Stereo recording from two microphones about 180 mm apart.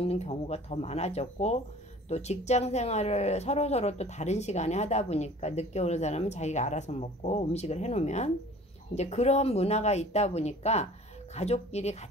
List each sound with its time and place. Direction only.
0.0 s speech: 35° left (ahead or behind)